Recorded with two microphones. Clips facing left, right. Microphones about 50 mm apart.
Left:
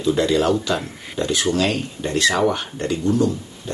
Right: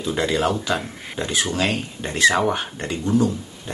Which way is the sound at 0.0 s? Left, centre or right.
Centre.